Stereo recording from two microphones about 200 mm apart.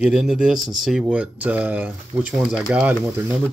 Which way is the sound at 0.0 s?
5° right (ahead or behind).